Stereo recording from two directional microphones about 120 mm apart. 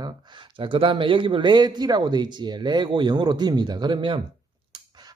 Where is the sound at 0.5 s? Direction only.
45° right (ahead or behind).